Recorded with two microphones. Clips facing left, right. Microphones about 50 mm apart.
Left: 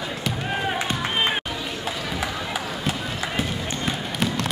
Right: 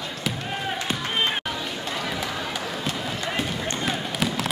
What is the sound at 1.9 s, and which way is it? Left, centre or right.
Run, centre.